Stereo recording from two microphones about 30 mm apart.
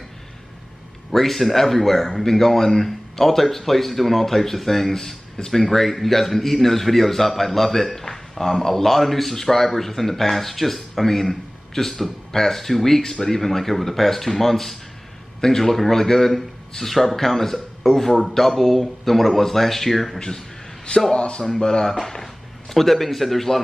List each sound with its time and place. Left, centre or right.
1.1 s speech: centre
20.2 s a sound: left
21.1 s speech: left
22.0 s speech: centre